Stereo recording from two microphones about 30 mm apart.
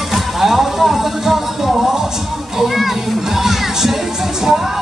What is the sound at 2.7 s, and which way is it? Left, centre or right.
Music, centre.